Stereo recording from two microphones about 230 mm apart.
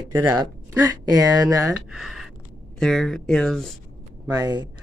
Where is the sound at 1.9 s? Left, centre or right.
Centre.